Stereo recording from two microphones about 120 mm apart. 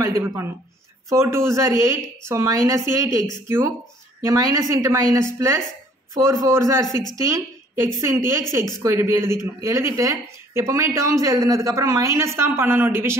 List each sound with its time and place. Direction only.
0.0 s a woman's voice: 25° right (ahead or behind)